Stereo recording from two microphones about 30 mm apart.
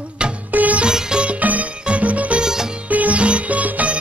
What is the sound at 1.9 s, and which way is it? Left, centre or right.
Music, right.